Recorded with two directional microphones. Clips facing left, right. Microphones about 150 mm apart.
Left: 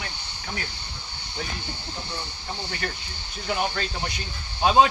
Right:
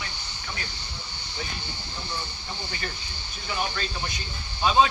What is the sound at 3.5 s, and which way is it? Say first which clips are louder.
Speech: left 3 dB; 70° left (ahead or behind).